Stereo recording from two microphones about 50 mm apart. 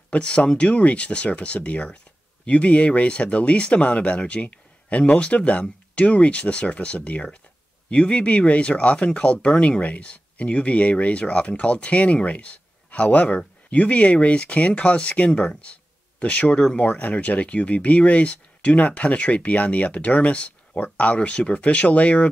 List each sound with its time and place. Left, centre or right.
0.1 s speech: left